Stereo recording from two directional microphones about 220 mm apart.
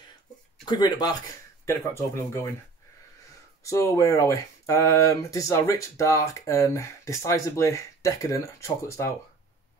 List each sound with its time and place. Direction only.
0.7 s speech: 20° left (ahead or behind)
3.6 s speech: 15° left (ahead or behind)